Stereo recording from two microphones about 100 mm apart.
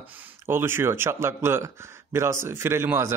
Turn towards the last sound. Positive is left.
turn(degrees=-25)  # may be behind; listen again after turning